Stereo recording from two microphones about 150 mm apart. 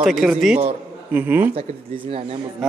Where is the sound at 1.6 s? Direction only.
40° right (ahead or behind).